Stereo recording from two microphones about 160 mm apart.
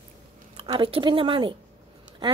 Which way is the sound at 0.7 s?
30° right (ahead or behind).